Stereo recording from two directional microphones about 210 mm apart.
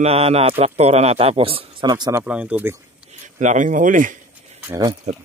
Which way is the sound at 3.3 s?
35° right (ahead or behind).